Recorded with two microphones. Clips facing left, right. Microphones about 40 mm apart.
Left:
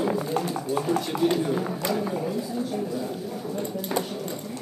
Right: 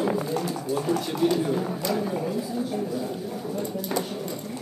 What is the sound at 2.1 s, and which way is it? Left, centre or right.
Speech, centre.